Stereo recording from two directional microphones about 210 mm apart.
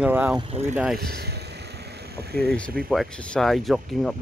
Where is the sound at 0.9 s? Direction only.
50° right (ahead or behind).